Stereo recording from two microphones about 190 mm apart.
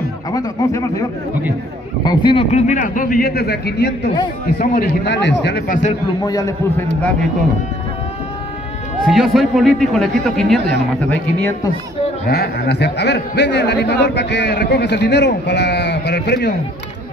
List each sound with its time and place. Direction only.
0.3 s speech: 20° left (ahead or behind)
2.0 s a man's voice: 25° left (ahead or behind); by 5.8 s 60° left (ahead or behind)
6.2 s a man's voice: 20° left (ahead or behind)
9.0 s a man's voice: centre (ahead or behind)
12.3 s a man's voice: 55° left (ahead or behind)